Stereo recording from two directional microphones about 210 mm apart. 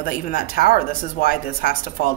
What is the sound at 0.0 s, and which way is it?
Speech, 45° left (ahead or behind).